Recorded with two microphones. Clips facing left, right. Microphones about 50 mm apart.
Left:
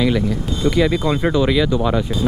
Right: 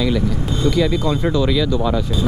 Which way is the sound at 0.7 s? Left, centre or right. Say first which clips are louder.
Left 1 dB; left.